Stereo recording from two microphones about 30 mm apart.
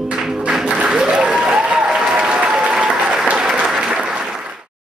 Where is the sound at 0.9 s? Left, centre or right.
Right.